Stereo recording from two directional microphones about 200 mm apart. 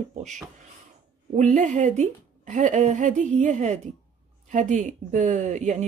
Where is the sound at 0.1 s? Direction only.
35° right (ahead or behind).